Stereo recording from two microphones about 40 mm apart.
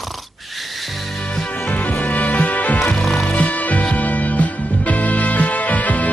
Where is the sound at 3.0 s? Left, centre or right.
Centre.